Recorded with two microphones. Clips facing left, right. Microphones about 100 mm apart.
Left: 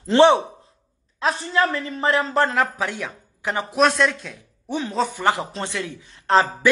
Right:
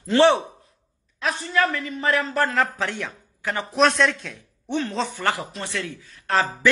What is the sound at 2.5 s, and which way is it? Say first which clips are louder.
A man's voice: left 1 dB; 10° left (ahead or behind).